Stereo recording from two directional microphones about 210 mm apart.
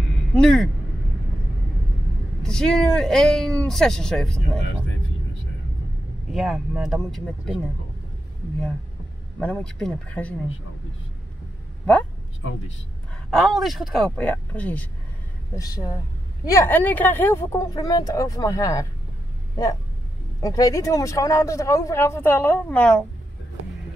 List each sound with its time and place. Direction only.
0.3 s speech: 5° left (ahead or behind)
2.4 s speech: centre (ahead or behind)
6.3 s speech: centre (ahead or behind)
9.4 s speech: 5° left (ahead or behind)
12.4 s a man's voice: 65° left (ahead or behind)
13.3 s speech: centre (ahead or behind)
15.5 s speech: 15° left (ahead or behind)
20.4 s speech: 15° left (ahead or behind)